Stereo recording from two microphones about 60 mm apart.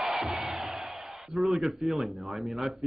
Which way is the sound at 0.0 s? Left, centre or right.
Centre.